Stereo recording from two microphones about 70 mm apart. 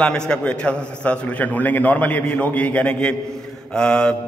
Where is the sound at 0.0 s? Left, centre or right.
Centre.